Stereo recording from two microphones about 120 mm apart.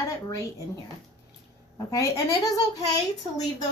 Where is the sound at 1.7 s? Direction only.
25° left (ahead or behind).